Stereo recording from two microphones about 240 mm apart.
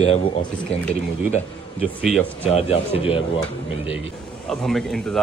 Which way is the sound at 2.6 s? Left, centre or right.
Left.